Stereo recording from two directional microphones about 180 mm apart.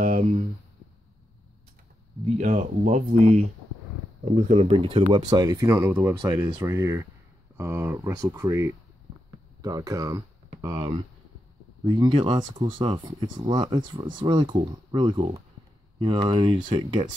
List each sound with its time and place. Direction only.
0.0 s speech: 45° right (ahead or behind)
2.2 s speech: 40° right (ahead or behind); by 17.1 s 25° right (ahead or behind)